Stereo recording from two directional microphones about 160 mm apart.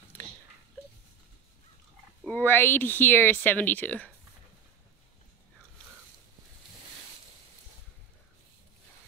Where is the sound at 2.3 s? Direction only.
10° left (ahead or behind).